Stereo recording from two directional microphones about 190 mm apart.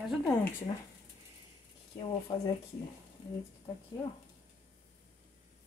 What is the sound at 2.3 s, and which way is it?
Speech, 25° left (ahead or behind).